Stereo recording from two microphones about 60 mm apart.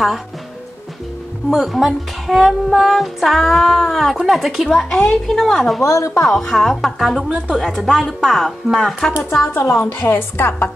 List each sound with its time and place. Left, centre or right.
1.5 s speech: centre
5.9 s speech: left
6.2 s speech: centre
7.2 s a woman's voice: centre
7.6 s speech: centre
9.5 s a woman's voice: left